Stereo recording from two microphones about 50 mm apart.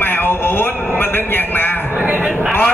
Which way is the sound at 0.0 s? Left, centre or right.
Left.